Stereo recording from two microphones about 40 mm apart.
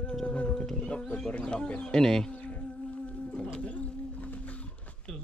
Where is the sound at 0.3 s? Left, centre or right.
Left.